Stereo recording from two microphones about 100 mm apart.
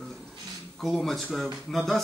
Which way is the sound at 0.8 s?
Centre (ahead or behind).